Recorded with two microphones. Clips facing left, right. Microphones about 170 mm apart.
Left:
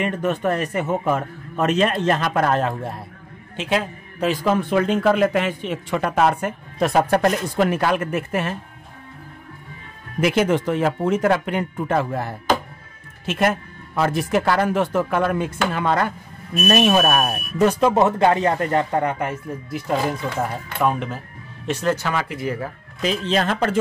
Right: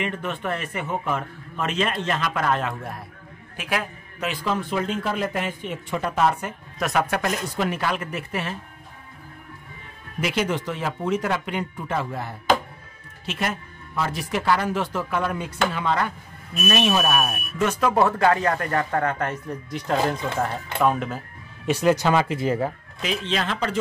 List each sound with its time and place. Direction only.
0.0 s speech: 45° left (ahead or behind)
2.7 s a man's voice: 25° left (ahead or behind)
4.3 s speech: 50° left (ahead or behind)
6.8 s speech: 30° left (ahead or behind)
7.2 s speech: 50° left (ahead or behind)
10.2 s speech: 50° left (ahead or behind)
17.3 s speech: 35° left (ahead or behind); by 21.2 s centre (ahead or behind)
21.6 s speech: 10° right (ahead or behind)
22.0 s speech: 25° right (ahead or behind)
23.0 s speech: 40° left (ahead or behind)